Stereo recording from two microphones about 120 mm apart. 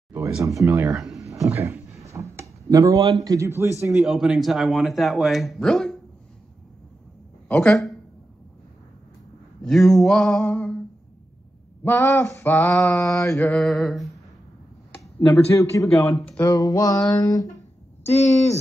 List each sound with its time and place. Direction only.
0.4 s speech: 25° right (ahead or behind)
0.9 s speech: centre (ahead or behind)
1.2 s a sound: 25° right (ahead or behind)
3.3 s speech: 25° right (ahead or behind)
3.9 s speech: 5° right (ahead or behind)
7.4 s speech: 10° left (ahead or behind)
9.6 s speech: centre (ahead or behind)
11.8 s male singing: 20° left (ahead or behind)
13.4 s speech: 5° left (ahead or behind)
14.9 s speech: 20° left (ahead or behind)
16.3 s male singing: 30° left (ahead or behind)
18.1 s speech: 65° left (ahead or behind)